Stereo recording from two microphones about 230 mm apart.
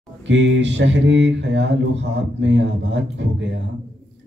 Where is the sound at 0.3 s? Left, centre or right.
Right.